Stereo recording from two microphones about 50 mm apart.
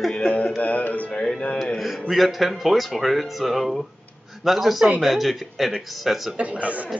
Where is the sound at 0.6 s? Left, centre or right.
Left.